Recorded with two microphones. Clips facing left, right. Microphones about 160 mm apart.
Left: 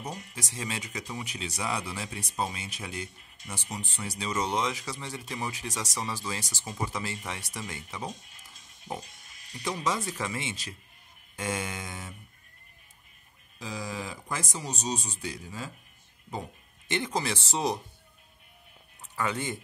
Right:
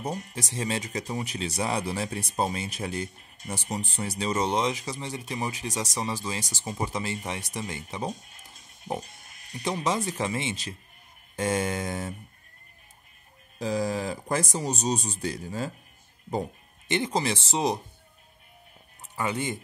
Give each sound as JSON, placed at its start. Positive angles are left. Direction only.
{"t": 0.1, "sound": "speech", "side_deg": -45}
{"t": 0.4, "sound": "speech", "side_deg": -30}
{"t": 4.5, "sound": "speech", "side_deg": -20}
{"t": 8.1, "sound": "speech", "side_deg": -45}
{"t": 8.9, "sound": "pig", "side_deg": -45}
{"t": 10.2, "sound": "speech", "side_deg": -25}
{"t": 11.3, "sound": "speech", "side_deg": -35}
{"t": 13.6, "sound": "speech", "side_deg": -45}
{"t": 16.8, "sound": "speech", "side_deg": -20}
{"t": 19.1, "sound": "speech", "side_deg": -20}